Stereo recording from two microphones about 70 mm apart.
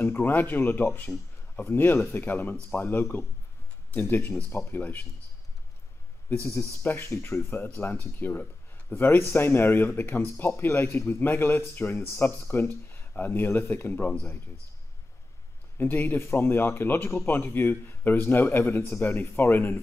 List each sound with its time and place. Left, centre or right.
0.0 s a man's voice: left
6.4 s speech: left
15.8 s a man's voice: left